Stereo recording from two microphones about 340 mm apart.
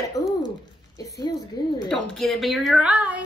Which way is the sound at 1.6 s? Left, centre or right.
Left.